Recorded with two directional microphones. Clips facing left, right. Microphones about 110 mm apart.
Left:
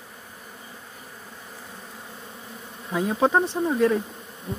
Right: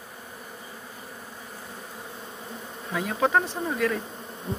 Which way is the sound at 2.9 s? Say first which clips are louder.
Left 3 dB; 25° left (ahead or behind).